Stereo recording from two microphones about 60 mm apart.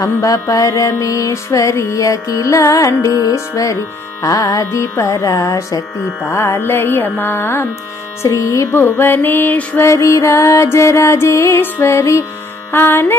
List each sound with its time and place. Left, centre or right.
0.0 s music: left
4.2 s speech: left
4.6 s speech: left
6.3 s music: left
6.6 s music: left
8.2 s music: left
8.7 s music: left
9.8 s music: left
12.7 s music: left